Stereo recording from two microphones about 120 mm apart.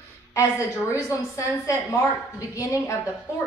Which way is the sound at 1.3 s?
25° left (ahead or behind).